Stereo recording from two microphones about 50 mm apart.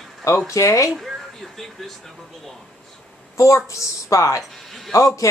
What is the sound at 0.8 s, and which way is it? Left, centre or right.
Speech, centre.